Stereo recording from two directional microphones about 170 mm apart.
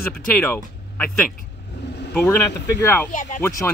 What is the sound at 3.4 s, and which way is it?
Speech, 20° left (ahead or behind).